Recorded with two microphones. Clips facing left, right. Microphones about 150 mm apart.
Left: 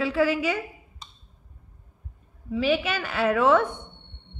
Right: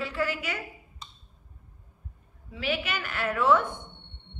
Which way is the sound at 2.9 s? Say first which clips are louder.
Left 7 dB; 90° left.